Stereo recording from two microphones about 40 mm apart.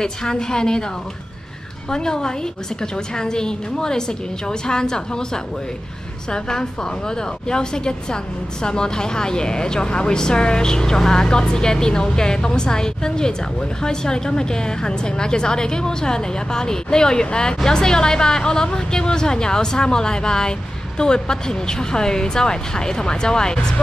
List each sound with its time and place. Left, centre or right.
0.0 s a woman's voice: centre
1.9 s a woman's voice: centre